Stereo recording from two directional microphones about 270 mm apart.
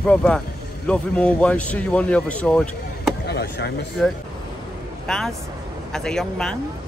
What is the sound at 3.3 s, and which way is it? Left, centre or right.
Chop, left.